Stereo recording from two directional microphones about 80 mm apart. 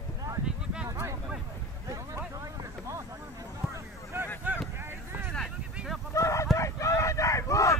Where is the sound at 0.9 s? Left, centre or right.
Right.